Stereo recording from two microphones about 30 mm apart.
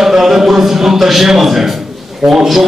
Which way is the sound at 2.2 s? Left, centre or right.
Centre.